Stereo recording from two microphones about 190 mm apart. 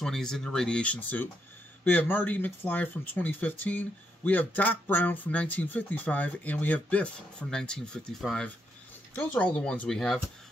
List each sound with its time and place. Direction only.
0.0 s speech: centre (ahead or behind)